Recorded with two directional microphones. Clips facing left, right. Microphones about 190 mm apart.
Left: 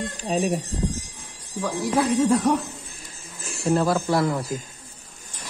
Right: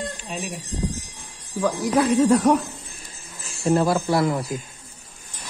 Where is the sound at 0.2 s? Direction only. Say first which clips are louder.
Left 9 dB; 40° left (ahead or behind).